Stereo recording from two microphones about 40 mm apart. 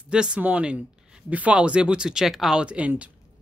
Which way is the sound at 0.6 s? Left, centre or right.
Right.